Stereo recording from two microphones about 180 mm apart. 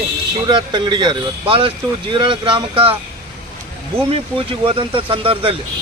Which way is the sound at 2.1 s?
25° right (ahead or behind).